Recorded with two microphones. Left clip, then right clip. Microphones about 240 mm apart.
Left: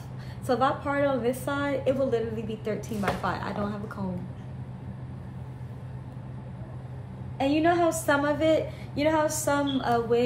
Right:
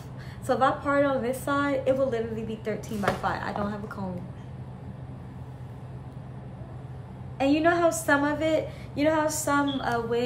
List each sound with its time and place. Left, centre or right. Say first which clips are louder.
0.5 s a woman's voice: right 2 dB; centre
7.3 s a woman's voice: right 1 dB; centre